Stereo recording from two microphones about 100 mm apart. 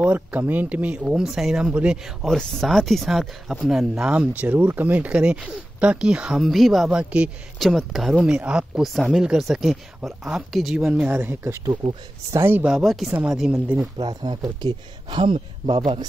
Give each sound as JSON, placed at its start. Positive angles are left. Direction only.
{"t": 0.0, "sound": "speech", "side_deg": -15}
{"t": 2.2, "sound": "speech", "side_deg": 5}
{"t": 7.5, "sound": "speech", "side_deg": 0}
{"t": 8.2, "sound": "speech", "side_deg": -10}
{"t": 11.0, "sound": "speech", "side_deg": -20}
{"t": 12.6, "sound": "speech", "side_deg": -5}
{"t": 13.4, "sound": "speech", "side_deg": -10}
{"t": 13.9, "sound": "speech", "side_deg": -50}